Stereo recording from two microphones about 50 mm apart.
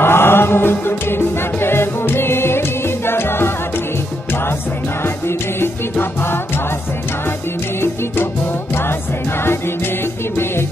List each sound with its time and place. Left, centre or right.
0.0 s music: left
5.0 s music: left
10.3 s music: left